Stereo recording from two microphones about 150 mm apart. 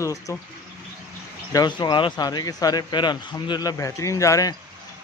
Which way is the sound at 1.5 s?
30° left (ahead or behind).